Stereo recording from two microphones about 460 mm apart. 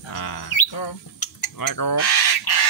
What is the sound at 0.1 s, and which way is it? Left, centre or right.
Bird, left.